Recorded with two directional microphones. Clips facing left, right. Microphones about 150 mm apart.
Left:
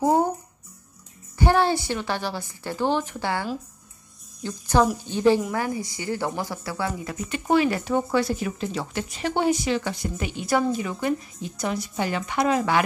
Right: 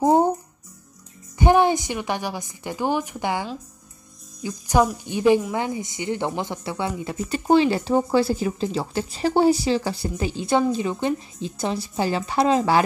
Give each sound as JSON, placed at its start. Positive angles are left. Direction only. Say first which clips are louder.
{"t": 0.0, "sound": "a woman's voice", "louder": "right 3 dB", "side_deg": -25}
{"t": 1.4, "sound": "a woman's voice", "louder": "right 3 dB", "side_deg": -15}